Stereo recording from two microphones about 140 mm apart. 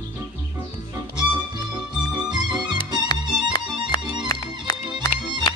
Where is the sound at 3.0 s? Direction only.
30° left (ahead or behind).